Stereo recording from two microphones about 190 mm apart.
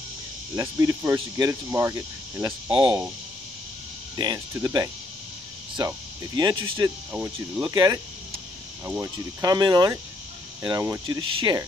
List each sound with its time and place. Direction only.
0.6 s cricket: 15° right (ahead or behind)
4.2 s speech: 20° right (ahead or behind)
7.1 s cricket: 5° right (ahead or behind)
7.6 s speech: 20° right (ahead or behind)